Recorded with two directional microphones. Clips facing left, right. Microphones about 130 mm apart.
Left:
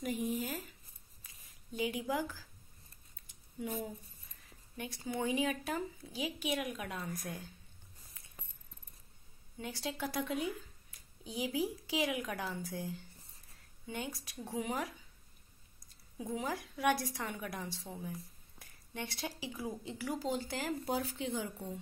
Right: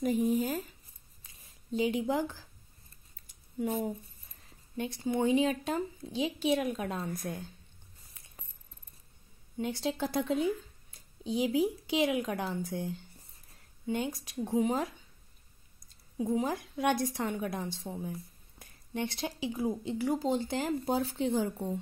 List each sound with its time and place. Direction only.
0.0 s speech: 35° right (ahead or behind)
1.2 s a sound: 25° right (ahead or behind)
3.5 s speech: 45° right (ahead or behind)
4.7 s a woman's voice: 25° right (ahead or behind)
9.6 s speech: 20° right (ahead or behind)
16.2 s a woman's voice: 25° right (ahead or behind)